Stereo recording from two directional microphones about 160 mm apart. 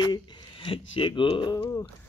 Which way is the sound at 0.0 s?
25° left (ahead or behind).